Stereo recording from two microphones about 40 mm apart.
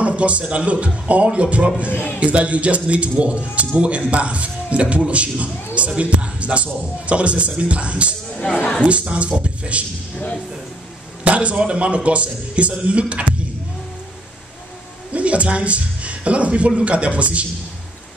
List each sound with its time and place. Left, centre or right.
0.0 s a man's voice: right
1.9 s a man's voice: left
2.1 s speech: right
11.2 s speech: right
15.1 s speech: right